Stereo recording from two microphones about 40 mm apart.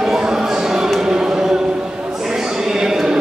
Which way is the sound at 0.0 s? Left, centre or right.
Centre.